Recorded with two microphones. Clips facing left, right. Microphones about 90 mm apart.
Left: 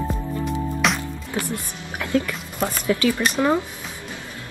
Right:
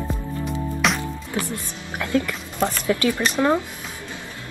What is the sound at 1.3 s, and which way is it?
Music, 20° left (ahead or behind).